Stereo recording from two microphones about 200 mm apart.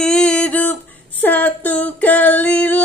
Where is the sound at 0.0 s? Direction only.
5° left (ahead or behind).